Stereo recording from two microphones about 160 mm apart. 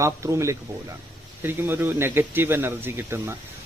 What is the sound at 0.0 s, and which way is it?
Speech, 15° right (ahead or behind).